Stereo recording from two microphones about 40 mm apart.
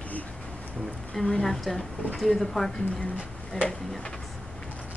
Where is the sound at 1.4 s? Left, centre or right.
Centre.